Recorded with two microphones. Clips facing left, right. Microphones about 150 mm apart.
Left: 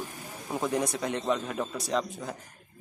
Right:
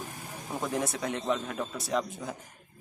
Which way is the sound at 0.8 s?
Centre (ahead or behind).